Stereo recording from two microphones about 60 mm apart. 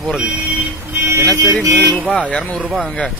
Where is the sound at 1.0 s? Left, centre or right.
Right.